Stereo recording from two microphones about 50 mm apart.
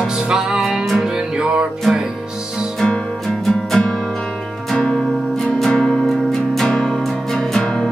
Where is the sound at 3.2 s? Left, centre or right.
Centre.